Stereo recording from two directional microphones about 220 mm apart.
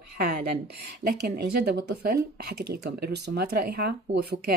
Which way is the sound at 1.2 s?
45° right (ahead or behind).